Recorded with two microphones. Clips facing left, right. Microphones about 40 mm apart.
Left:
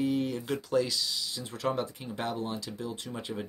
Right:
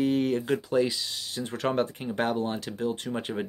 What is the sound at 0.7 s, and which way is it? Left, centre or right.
Speech, right.